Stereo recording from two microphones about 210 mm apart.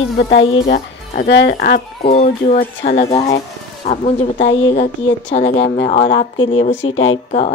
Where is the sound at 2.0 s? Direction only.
35° left (ahead or behind).